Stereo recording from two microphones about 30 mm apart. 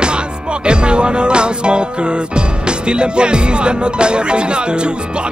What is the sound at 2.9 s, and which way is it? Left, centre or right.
Music, right.